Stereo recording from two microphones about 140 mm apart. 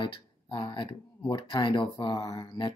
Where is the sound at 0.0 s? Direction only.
35° left (ahead or behind).